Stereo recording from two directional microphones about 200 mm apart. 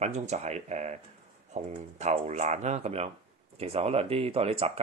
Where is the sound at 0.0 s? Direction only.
35° right (ahead or behind).